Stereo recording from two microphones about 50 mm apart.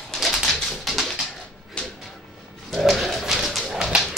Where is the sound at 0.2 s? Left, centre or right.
Centre.